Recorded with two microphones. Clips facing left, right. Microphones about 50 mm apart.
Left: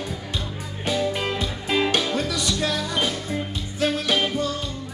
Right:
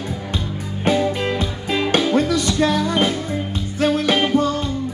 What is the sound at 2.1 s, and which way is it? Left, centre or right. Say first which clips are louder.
Music: right 7 dB; right.